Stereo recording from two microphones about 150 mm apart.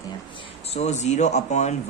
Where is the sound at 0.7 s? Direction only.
50° left (ahead or behind).